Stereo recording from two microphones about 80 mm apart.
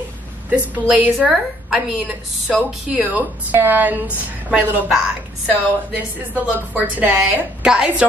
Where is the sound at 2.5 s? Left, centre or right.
Right.